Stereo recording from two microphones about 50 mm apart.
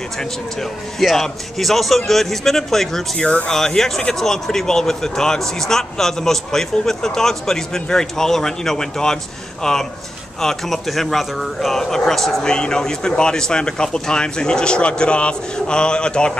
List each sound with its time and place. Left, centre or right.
0.2 s a man's voice: centre